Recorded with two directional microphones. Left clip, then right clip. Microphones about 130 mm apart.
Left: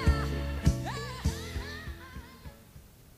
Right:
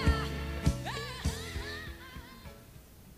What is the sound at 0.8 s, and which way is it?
Music, 50° right (ahead or behind).